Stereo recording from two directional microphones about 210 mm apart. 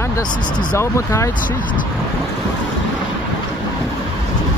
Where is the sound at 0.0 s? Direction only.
15° left (ahead or behind).